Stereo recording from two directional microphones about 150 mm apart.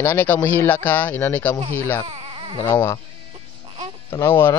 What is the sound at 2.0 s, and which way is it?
Baby cry, 40° right (ahead or behind).